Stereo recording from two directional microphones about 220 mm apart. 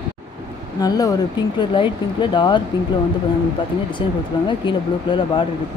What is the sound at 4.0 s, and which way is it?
Speech, 20° left (ahead or behind).